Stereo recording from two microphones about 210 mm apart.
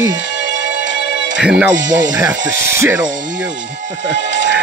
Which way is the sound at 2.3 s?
60° right (ahead or behind).